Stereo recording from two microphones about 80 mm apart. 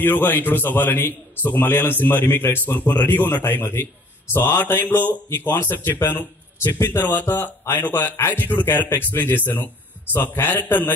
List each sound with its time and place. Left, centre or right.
0.0 s a man's voice: left